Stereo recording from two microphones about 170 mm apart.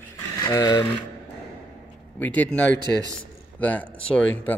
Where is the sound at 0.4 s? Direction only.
20° left (ahead or behind).